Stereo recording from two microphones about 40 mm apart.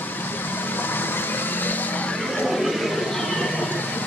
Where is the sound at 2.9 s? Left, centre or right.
Centre.